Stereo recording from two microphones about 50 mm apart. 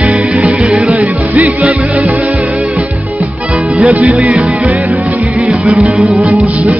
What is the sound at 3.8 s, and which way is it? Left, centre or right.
Music, right.